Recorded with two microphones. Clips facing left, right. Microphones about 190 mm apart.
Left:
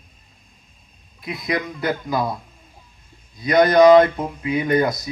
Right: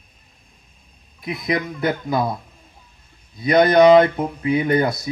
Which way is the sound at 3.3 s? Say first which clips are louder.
Right 1 dB; 25° right (ahead or behind).